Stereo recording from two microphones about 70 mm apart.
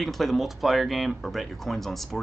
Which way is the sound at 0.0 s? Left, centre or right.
Centre.